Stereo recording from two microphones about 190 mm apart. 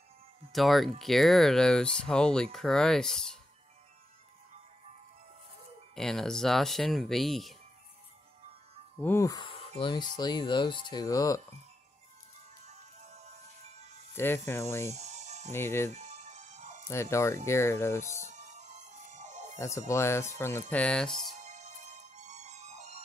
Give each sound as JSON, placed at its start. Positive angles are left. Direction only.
{"t": 0.5, "sound": "speech", "side_deg": 0}
{"t": 5.9, "sound": "speech", "side_deg": 5}
{"t": 9.0, "sound": "speech", "side_deg": 15}
{"t": 12.6, "sound": "music", "side_deg": -35}
{"t": 14.1, "sound": "speech", "side_deg": 10}
{"t": 15.0, "sound": "music", "side_deg": -35}
{"t": 15.5, "sound": "speech", "side_deg": 10}
{"t": 15.9, "sound": "music", "side_deg": -40}
{"t": 16.9, "sound": "speech", "side_deg": 15}
{"t": 18.2, "sound": "music", "side_deg": -40}
{"t": 19.6, "sound": "speech", "side_deg": 15}
{"t": 21.4, "sound": "music", "side_deg": -40}